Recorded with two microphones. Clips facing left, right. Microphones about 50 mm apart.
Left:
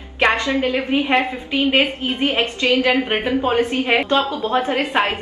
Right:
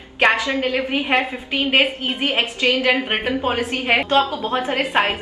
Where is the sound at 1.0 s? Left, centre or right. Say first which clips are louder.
Left 1 dB; centre.